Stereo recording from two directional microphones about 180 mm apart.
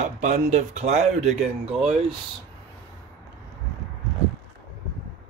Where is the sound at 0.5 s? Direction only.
40° right (ahead or behind).